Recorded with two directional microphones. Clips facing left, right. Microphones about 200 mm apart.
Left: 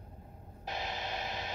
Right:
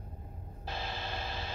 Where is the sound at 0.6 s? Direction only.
15° left (ahead or behind).